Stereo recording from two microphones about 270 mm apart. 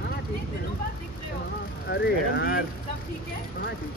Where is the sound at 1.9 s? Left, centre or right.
Left.